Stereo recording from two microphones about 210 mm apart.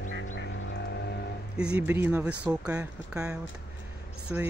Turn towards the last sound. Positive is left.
turn(degrees=-5)  # may be behind; listen again after turning